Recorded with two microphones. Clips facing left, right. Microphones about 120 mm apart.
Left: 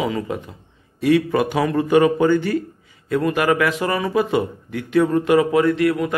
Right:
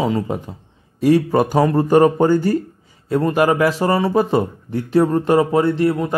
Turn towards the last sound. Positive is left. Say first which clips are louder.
# right 1 dB
turn(degrees=-30)  # may be behind; listen again after turning